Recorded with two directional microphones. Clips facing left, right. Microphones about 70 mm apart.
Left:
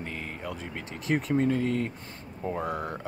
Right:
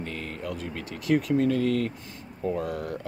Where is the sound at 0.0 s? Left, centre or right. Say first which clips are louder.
Right 2 dB; centre.